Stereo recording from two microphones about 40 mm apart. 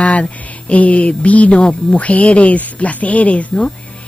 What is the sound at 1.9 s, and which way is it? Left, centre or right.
Speech, left.